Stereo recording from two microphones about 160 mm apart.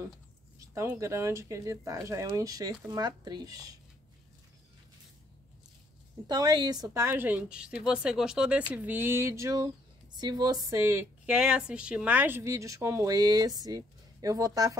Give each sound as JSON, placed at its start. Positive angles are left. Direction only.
{"t": 0.6, "sound": "a woman's voice", "side_deg": -20}
{"t": 6.2, "sound": "a woman's voice", "side_deg": -25}
{"t": 11.3, "sound": "a woman's voice", "side_deg": -5}